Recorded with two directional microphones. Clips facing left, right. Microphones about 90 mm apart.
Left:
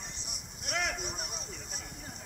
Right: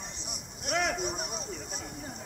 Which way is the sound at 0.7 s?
35° right (ahead or behind).